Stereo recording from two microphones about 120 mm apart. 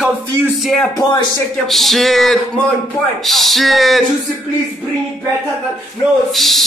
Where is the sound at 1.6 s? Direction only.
Centre (ahead or behind).